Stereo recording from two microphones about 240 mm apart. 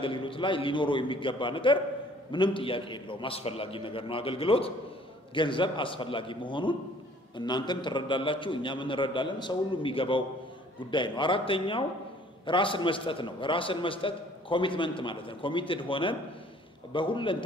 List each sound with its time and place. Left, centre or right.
0.0 s a man's voice: left